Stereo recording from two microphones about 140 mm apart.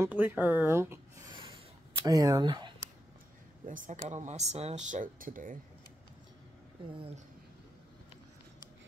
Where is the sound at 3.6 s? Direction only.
65° right (ahead or behind).